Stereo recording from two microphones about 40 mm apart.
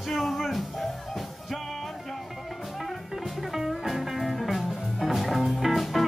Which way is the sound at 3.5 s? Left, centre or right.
Centre.